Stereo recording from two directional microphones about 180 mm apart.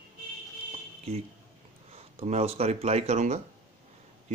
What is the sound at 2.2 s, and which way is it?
Speech, 35° right (ahead or behind).